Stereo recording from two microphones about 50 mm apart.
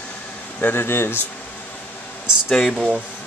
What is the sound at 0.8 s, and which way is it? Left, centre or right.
Speech, left.